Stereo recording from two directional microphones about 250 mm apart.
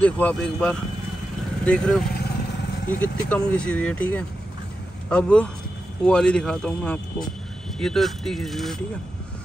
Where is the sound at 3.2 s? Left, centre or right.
Centre.